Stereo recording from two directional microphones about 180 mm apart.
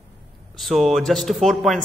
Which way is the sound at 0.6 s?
Centre (ahead or behind).